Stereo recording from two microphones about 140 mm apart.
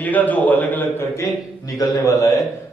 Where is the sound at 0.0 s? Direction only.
10° left (ahead or behind).